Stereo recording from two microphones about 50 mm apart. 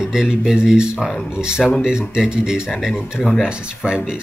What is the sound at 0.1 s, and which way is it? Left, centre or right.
Speech, centre.